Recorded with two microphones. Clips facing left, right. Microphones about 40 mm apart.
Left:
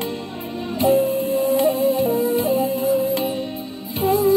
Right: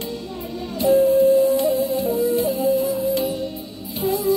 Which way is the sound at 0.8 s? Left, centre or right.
Left.